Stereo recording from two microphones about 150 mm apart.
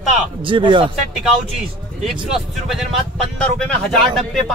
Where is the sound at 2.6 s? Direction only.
Centre (ahead or behind).